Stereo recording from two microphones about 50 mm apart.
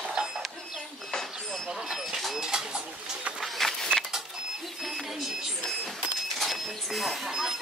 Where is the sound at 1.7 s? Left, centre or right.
Centre.